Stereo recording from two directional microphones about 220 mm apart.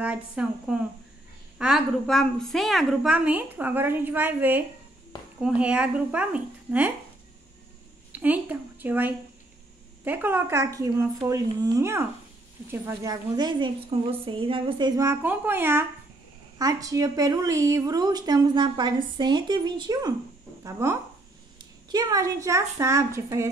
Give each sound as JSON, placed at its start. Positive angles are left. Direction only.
{"t": 0.0, "sound": "a woman's voice", "side_deg": -5}
{"t": 8.1, "sound": "speech", "side_deg": -5}